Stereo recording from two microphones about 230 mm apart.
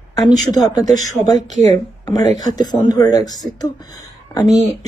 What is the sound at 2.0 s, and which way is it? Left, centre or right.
A woman's voice, centre.